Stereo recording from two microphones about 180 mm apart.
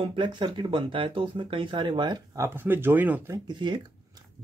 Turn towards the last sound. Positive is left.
turn(degrees=-25)  # may be behind; listen again after turning